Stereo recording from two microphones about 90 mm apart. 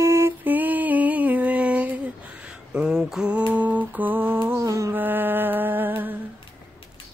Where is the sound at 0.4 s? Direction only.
20° right (ahead or behind).